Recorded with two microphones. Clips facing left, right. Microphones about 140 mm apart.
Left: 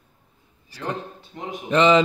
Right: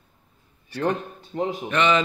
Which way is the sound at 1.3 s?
35° right (ahead or behind).